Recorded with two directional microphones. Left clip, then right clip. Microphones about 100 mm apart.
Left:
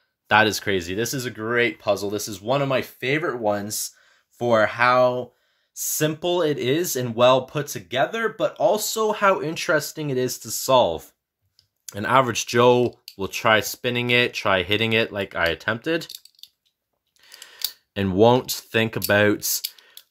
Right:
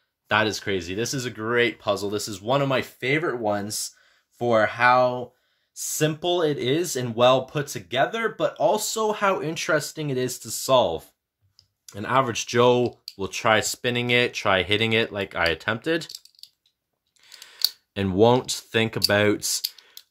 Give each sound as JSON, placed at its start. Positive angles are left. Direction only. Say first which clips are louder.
{"t": 0.3, "sound": "speech", "louder": "left 4 dB", "side_deg": 50}
{"t": 11.8, "sound": "speech", "louder": "left 3 dB", "side_deg": 85}
{"t": 12.4, "sound": "speech", "louder": "left 2 dB", "side_deg": 35}
{"t": 17.2, "sound": "speech", "louder": "right 5 dB", "side_deg": 20}